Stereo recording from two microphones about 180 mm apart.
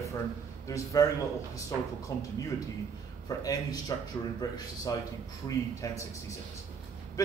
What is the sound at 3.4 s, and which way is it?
A man's voice, 20° left (ahead or behind).